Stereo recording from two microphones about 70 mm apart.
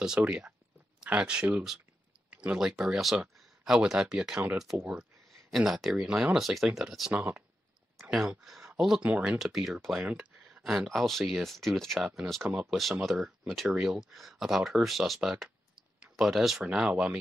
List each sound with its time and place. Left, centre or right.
0.2 s speech: centre
5.7 s speech: centre
7.1 s speech: centre
8.0 s speech: centre
9.0 s speech: centre
9.4 s speech: centre